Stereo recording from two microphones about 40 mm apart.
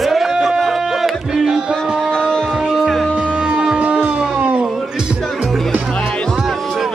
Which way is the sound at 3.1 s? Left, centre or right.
Right.